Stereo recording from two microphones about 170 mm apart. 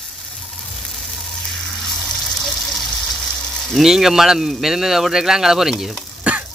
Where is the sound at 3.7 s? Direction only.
Centre (ahead or behind).